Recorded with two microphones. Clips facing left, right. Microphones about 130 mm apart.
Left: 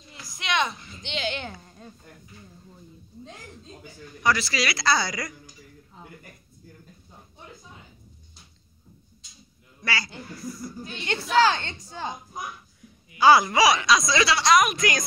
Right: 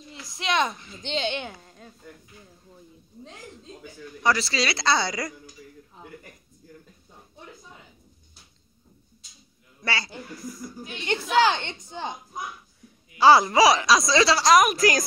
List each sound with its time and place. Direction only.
0.4 s speech: 35° right (ahead or behind)
1.6 s a sound: centre (ahead or behind)
4.2 s speech: 30° right (ahead or behind)
9.8 s speech: 25° right (ahead or behind)
10.8 s speech: 15° right (ahead or behind)
13.2 s speech: 30° right (ahead or behind)